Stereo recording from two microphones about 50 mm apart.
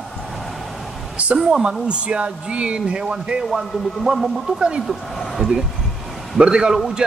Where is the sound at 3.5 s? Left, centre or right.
Centre.